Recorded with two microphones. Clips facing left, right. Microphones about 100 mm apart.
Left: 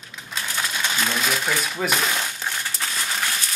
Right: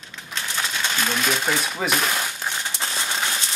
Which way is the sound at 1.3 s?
20° right (ahead or behind).